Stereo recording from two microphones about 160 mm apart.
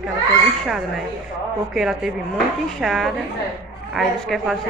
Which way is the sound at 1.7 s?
5° right (ahead or behind).